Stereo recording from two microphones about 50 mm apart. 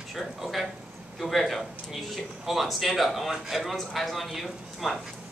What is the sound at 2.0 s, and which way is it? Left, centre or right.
Speech, centre.